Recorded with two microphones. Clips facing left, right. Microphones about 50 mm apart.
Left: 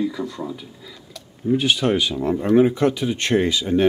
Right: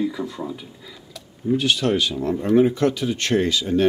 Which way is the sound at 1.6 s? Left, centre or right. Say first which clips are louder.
Even; centre.